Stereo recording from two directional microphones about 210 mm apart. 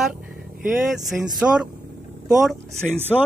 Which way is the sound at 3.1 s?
Centre (ahead or behind).